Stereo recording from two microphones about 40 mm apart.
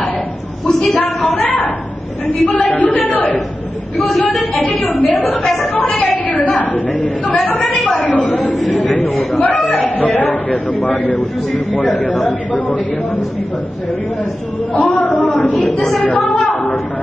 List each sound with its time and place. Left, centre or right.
0.8 s a woman's voice: left
14.7 s a woman's voice: left
16.0 s a sound: left